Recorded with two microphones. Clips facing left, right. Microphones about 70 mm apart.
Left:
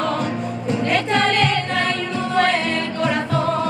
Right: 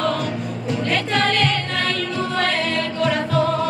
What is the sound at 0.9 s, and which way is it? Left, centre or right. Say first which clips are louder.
Music: left 2 dB; left.